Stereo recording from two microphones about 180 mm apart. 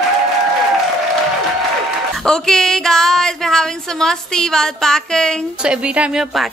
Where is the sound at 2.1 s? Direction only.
5° left (ahead or behind).